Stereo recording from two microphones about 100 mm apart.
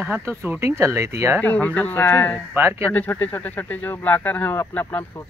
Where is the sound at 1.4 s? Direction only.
15° left (ahead or behind).